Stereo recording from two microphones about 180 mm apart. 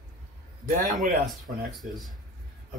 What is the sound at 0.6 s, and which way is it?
Speech, 50° right (ahead or behind).